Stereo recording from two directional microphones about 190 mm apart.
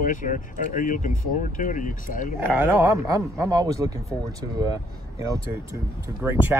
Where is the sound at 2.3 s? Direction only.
10° right (ahead or behind).